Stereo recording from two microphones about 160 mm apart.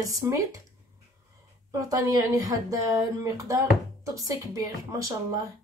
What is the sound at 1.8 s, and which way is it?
Speech, 25° right (ahead or behind).